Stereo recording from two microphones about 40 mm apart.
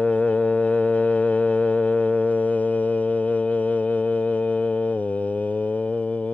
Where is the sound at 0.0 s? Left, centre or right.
Left.